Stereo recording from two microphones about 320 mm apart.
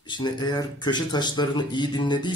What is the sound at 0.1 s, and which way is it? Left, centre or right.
Speech, centre.